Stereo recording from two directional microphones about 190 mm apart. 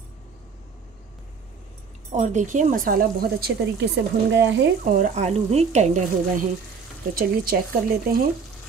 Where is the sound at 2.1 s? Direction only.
40° right (ahead or behind); by 4.6 s 70° right (ahead or behind).